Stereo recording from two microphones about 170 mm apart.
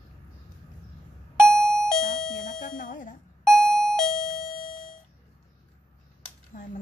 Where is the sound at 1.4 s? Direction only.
5° left (ahead or behind).